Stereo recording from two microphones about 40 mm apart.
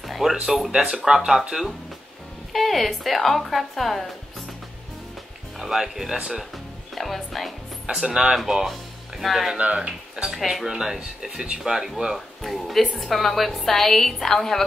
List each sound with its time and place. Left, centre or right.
0.0 s a sound: centre
0.7 s speech: centre
2.5 s a woman's voice: centre
5.6 s speech: centre
7.0 s speech: centre
7.9 s a woman's voice: centre
9.6 s speech: right
10.3 s a woman's voice: centre